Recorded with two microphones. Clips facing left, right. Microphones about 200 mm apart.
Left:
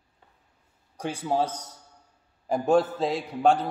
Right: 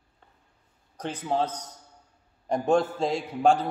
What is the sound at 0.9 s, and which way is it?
A man's voice, 10° left (ahead or behind).